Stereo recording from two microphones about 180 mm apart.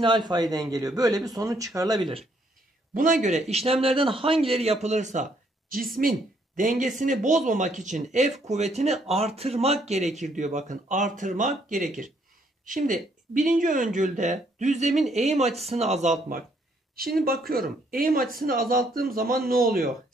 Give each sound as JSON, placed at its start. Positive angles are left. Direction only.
{"t": 0.0, "sound": "speech", "side_deg": -25}
{"t": 2.9, "sound": "speech", "side_deg": -45}
{"t": 3.4, "sound": "a woman's voice", "side_deg": -35}